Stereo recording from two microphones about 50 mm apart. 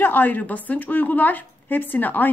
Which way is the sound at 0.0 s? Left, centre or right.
Left.